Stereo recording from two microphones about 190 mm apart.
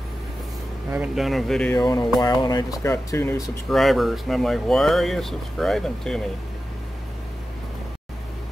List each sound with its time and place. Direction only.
0.9 s speech: 5° right (ahead or behind)
2.1 s speech: 20° left (ahead or behind)
3.4 s speech: centre (ahead or behind)